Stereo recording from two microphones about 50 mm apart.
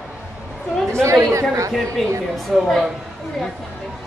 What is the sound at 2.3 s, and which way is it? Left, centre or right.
Speech, centre.